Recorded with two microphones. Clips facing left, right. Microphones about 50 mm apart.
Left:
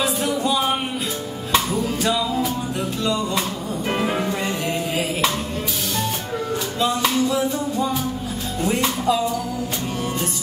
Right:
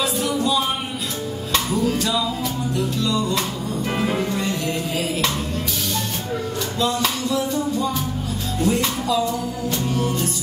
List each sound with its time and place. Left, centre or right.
0.0 s music: left
1.5 s music: centre
2.7 s music: left
3.9 s music: centre
7.0 s music: centre